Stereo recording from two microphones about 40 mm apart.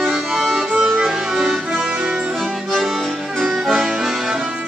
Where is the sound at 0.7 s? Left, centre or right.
Centre.